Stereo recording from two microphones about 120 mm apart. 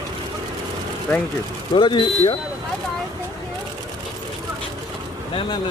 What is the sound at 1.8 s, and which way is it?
Speech, 45° left (ahead or behind).